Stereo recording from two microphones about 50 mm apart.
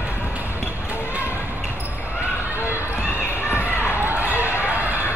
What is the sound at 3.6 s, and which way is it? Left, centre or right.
Basketball bounce, right.